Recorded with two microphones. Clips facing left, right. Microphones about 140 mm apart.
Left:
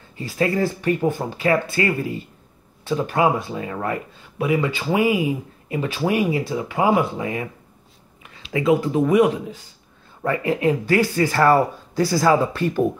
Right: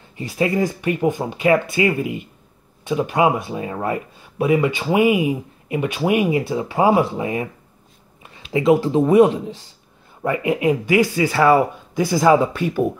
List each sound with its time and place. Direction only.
0.1 s speech: 20° right (ahead or behind)
8.5 s speech: 25° right (ahead or behind)
10.2 s speech: 15° right (ahead or behind)